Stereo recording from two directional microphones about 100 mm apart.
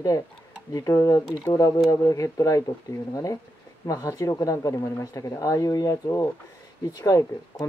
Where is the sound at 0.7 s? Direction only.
30° left (ahead or behind).